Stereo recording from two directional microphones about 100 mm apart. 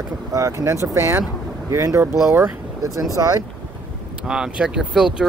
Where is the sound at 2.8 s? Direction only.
35° right (ahead or behind).